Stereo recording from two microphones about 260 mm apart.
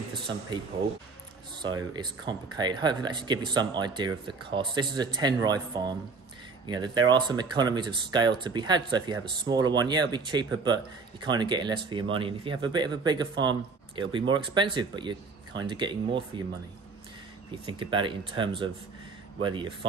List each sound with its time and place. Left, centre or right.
1.6 s speech: centre
17.6 s speech: centre